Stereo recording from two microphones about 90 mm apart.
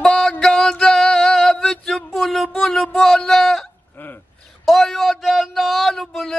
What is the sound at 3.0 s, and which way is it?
Speech, 5° left (ahead or behind).